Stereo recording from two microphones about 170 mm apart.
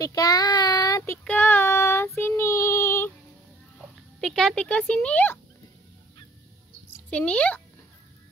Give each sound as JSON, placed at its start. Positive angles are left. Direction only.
{"t": 0.0, "sound": "child singing", "side_deg": 20}
{"t": 4.2, "sound": "speech", "side_deg": 0}
{"t": 7.1, "sound": "a child's voice", "side_deg": 5}